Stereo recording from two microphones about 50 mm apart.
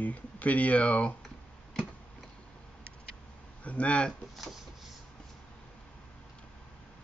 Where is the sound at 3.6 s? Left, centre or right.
Left.